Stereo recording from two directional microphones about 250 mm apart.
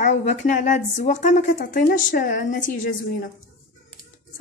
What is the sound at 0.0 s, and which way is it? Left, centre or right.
A woman's voice, left.